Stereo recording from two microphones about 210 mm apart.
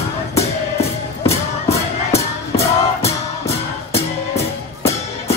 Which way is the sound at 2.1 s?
30° left (ahead or behind).